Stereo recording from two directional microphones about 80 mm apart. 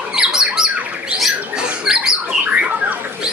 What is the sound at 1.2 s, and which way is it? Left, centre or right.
Rodents, centre.